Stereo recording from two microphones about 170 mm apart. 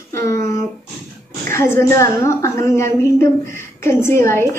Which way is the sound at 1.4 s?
15° left (ahead or behind).